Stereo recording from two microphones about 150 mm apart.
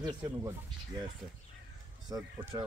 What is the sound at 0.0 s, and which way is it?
Speech, 25° right (ahead or behind).